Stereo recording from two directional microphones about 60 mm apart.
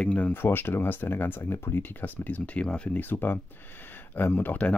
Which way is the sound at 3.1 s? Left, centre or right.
Left.